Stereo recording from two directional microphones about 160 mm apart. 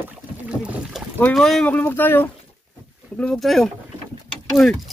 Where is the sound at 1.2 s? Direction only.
Centre (ahead or behind).